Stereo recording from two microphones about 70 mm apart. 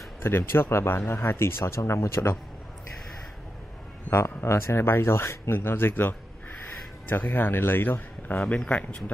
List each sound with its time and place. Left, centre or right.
0.2 s speech: left
4.1 s speech: left
7.3 s speech: left
8.5 s speech: centre